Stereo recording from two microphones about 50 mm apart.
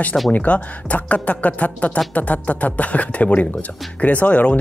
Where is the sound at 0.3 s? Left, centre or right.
Left.